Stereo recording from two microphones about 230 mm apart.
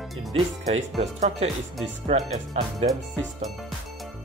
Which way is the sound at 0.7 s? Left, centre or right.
Right.